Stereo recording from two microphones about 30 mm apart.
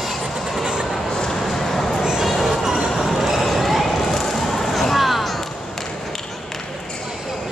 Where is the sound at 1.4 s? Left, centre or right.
Centre.